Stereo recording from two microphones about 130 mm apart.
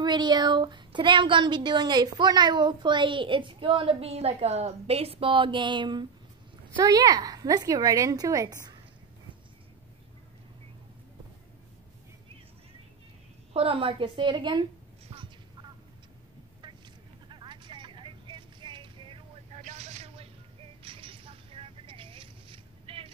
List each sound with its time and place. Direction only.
0.0 s a woman's voice: 35° right (ahead or behind)
13.5 s speech: 45° right (ahead or behind)
15.0 s a sound: 40° right (ahead or behind)
16.6 s vehicle: 35° right (ahead or behind)
19.5 s vehicle: 60° right (ahead or behind)
20.8 s vehicle: 40° right (ahead or behind)